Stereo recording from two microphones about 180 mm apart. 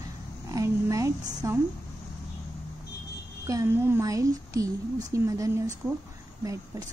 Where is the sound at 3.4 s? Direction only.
15° right (ahead or behind).